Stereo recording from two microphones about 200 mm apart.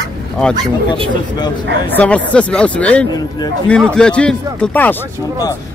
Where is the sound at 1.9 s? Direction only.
5° left (ahead or behind).